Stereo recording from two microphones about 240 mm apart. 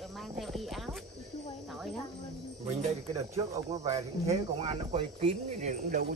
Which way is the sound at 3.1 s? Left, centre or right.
Centre.